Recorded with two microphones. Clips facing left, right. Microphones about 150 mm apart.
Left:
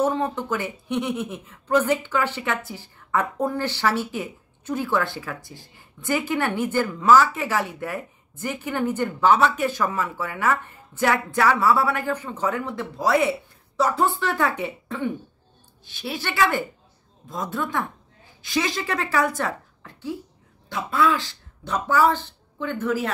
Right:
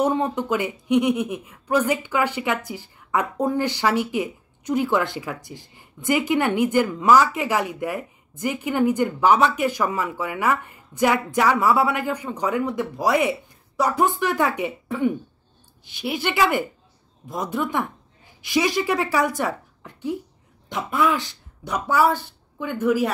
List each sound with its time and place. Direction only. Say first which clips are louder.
0.0 s speech: right 2 dB; 20° right (ahead or behind)